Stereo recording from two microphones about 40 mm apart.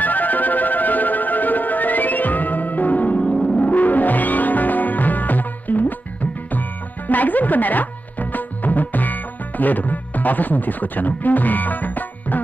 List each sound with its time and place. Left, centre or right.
0.0 s music: left
7.1 s music: left